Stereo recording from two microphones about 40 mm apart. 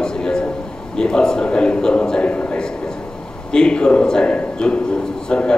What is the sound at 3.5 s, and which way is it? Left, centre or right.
A man's voice, left.